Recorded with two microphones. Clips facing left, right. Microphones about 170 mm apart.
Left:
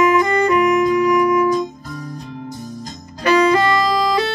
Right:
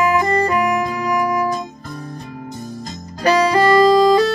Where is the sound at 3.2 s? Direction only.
35° right (ahead or behind).